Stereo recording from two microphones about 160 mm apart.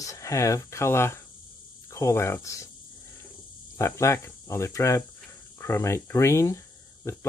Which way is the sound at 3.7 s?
20° left (ahead or behind).